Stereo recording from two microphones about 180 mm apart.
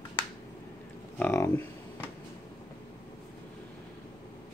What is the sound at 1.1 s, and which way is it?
Speech, 10° left (ahead or behind).